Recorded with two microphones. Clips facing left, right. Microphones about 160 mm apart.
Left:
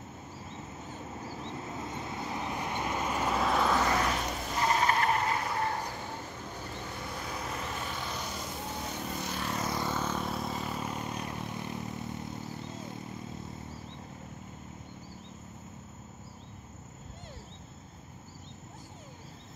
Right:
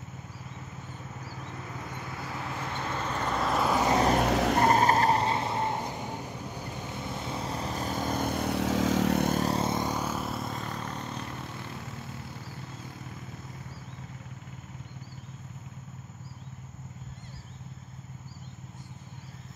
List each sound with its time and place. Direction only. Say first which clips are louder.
1.4 s vehicle: left 1 dB; 20° left (ahead or behind); by 3.7 s centre (ahead or behind)
3.7 s vehicle: right 3 dB; 20° right (ahead or behind)
4.2 s vehicle: right 9 dB; 75° right (ahead or behind); by 6.3 s 15° right (ahead or behind)
7.2 s vehicle: right 4 dB; 25° right (ahead or behind); by 9.3 s 80° right
9.3 s music: right 8 dB; 40° right (ahead or behind)
9.6 s vehicle: right 3 dB; 20° right (ahead or behind); by 11.8 s 15° left (ahead or behind)